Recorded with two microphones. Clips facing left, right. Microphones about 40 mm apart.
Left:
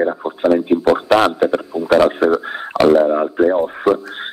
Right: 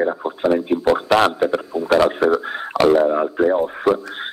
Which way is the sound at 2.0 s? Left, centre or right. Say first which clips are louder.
Left 2 dB; left.